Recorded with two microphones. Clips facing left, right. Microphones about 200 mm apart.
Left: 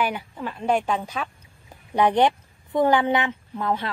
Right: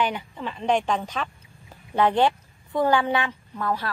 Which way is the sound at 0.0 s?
5° left (ahead or behind).